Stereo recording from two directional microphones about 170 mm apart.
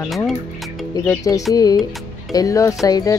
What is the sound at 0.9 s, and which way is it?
Speech, 20° left (ahead or behind).